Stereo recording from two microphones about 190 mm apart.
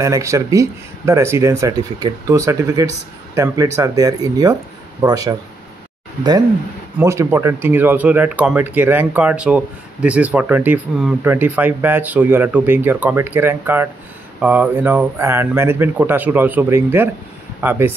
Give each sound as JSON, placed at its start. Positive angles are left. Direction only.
{"t": 0.0, "sound": "speech", "side_deg": -15}
{"t": 7.0, "sound": "speech", "side_deg": -15}